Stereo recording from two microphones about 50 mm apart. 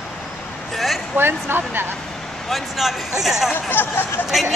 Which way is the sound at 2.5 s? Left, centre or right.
Centre.